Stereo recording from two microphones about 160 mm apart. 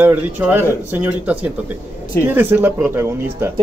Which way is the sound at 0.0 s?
10° right (ahead or behind).